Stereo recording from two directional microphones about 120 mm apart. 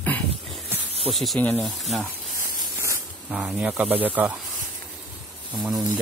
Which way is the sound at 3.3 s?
5° right (ahead or behind).